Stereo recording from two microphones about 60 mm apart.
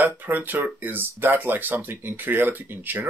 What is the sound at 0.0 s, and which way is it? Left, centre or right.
Speech, right.